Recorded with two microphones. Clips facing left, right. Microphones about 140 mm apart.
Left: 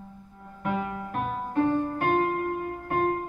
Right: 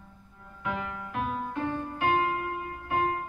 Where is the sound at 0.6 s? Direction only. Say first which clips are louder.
Left 4 dB; 45° left (ahead or behind).